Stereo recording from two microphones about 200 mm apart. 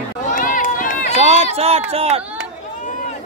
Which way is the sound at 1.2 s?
30° right (ahead or behind).